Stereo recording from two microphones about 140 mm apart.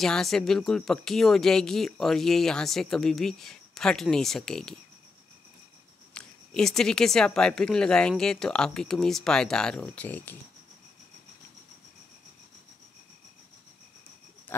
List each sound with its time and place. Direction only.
0.0 s speech: centre (ahead or behind)
6.1 s speech: 5° left (ahead or behind)
14.5 s a sound: 15° left (ahead or behind)